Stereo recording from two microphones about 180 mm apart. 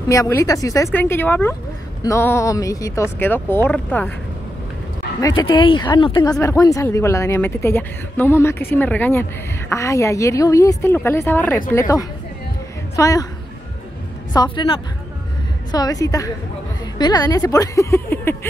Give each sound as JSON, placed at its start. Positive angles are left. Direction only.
{"t": 0.1, "sound": "speech", "side_deg": 20}
{"t": 5.2, "sound": "speech", "side_deg": 25}
{"t": 12.9, "sound": "speech", "side_deg": 20}
{"t": 14.3, "sound": "speech", "side_deg": 25}